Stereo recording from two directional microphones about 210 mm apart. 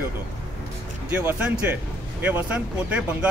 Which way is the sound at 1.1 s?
5° right (ahead or behind).